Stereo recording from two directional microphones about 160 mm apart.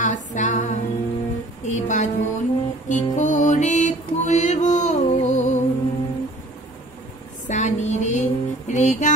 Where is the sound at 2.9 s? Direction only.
50° left (ahead or behind).